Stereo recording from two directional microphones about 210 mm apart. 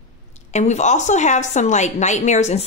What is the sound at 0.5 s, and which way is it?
A woman's voice, 35° left (ahead or behind).